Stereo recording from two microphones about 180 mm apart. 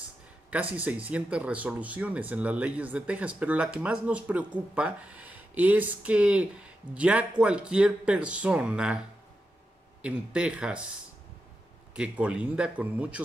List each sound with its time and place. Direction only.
0.5 s speech: 10° right (ahead or behind)
10.0 s speech: 5° right (ahead or behind)
11.9 s speech: 5° right (ahead or behind)